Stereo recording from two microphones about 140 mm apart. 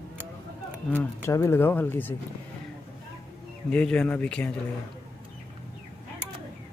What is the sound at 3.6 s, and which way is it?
Speech, 10° left (ahead or behind).